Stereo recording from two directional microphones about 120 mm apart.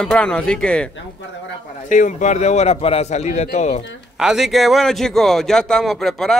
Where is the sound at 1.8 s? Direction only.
90° left; by 3.8 s 70° left (ahead or behind).